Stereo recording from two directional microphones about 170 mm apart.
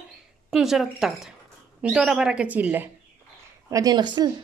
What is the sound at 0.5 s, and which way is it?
Speech, centre (ahead or behind).